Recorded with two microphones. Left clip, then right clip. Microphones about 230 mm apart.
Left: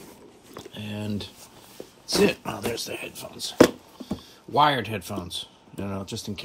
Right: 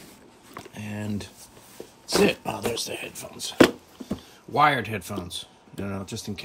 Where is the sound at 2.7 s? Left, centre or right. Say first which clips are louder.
Right 1 dB; centre.